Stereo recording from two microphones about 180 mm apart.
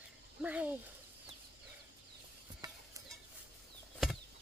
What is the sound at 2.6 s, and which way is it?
Stir, 20° right (ahead or behind).